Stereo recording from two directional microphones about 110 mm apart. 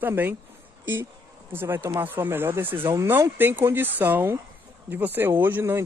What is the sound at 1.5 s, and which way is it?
Speech, 20° right (ahead or behind).